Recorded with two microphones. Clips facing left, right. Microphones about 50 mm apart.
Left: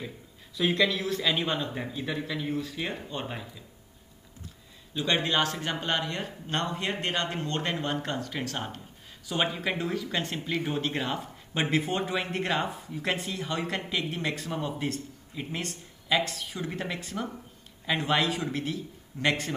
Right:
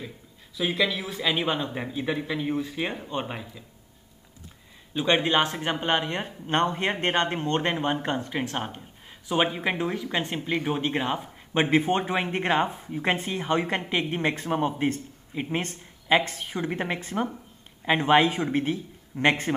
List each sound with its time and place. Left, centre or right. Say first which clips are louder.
0.6 s speech: even; centre
4.9 s speech: right 4 dB; right